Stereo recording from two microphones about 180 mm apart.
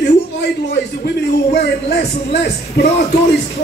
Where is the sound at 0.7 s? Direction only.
65° left (ahead or behind).